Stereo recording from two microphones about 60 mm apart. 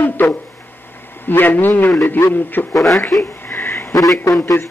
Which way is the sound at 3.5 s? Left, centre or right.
Left.